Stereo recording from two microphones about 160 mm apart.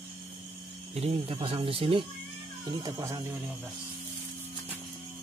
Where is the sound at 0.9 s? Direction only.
40° right (ahead or behind); by 3.3 s 20° right (ahead or behind).